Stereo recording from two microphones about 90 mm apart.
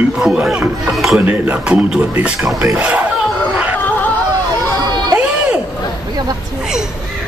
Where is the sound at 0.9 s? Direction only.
5° right (ahead or behind).